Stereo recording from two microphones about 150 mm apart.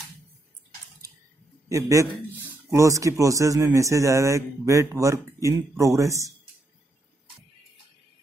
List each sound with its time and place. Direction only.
1.7 s a man's voice: 20° right (ahead or behind)